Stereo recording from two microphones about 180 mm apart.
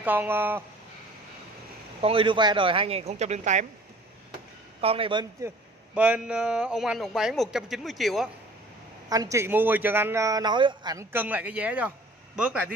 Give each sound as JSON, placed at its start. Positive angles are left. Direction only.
{"t": 0.0, "sound": "a man's voice", "side_deg": -10}
{"t": 2.0, "sound": "speech", "side_deg": -30}
{"t": 4.7, "sound": "a man's voice", "side_deg": -30}
{"t": 5.4, "sound": "a man's voice", "side_deg": -15}
{"t": 9.1, "sound": "a man's voice", "side_deg": -20}